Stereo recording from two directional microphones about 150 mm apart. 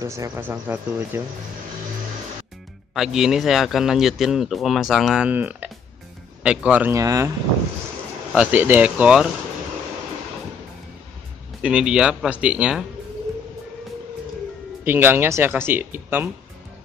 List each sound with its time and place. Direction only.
0.0 s speech: 20° right (ahead or behind)
2.9 s speech: 5° right (ahead or behind)
7.0 s speech: 20° right (ahead or behind)
8.3 s speech: 10° right (ahead or behind)
11.6 s speech: 5° right (ahead or behind)
14.9 s speech: 15° right (ahead or behind)